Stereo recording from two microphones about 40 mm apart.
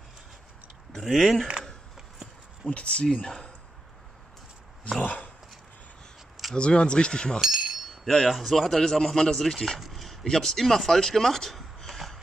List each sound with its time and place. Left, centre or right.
1.0 s speech: centre
2.7 s speech: left
3.3 s speech: centre
5.0 s dog: left
6.5 s speech: left
7.3 s chink: centre
8.3 s speech: centre
9.8 s a sound: centre
10.3 s speech: centre